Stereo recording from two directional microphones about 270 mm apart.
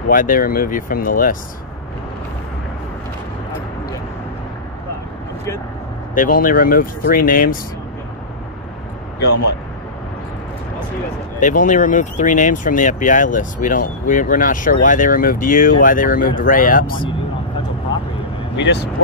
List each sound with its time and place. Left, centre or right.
0.1 s speech: left
6.1 s speech: left
11.3 s speech: left
18.6 s speech: left